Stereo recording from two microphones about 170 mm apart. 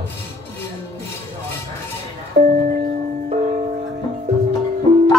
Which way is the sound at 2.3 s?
50° right (ahead or behind).